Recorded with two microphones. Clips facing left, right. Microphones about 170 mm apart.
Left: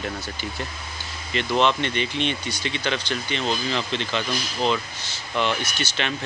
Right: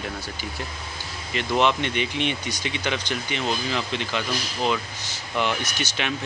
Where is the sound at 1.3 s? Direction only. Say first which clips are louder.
Left 1 dB; 10° right (ahead or behind).